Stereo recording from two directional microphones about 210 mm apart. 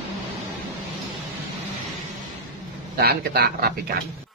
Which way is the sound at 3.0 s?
50° right (ahead or behind).